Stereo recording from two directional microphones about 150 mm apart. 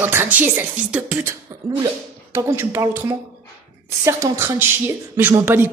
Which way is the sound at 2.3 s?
20° right (ahead or behind).